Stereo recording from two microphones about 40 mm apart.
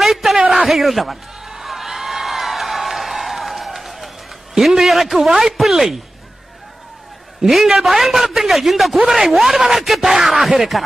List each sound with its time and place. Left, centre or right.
0.0 s a sound: centre
5.3 s speech: centre
7.4 s a man's voice: centre
9.0 s speech: right
9.3 s a man's voice: centre